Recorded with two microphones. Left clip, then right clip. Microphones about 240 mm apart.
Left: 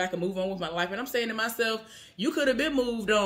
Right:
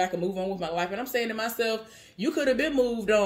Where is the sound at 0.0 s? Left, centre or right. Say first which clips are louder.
Right 2 dB; centre.